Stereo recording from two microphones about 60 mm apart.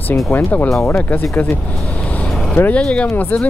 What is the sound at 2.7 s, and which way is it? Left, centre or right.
Speech, left.